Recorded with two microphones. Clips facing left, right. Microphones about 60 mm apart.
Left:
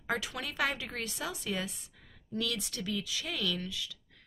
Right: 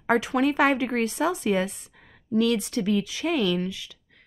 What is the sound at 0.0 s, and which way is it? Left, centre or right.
A woman's voice, right.